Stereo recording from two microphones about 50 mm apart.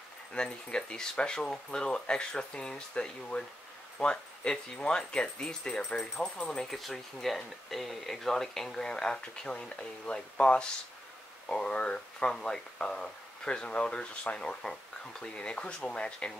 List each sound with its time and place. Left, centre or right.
0.3 s speech: centre
6.6 s speech: centre; by 16.3 s left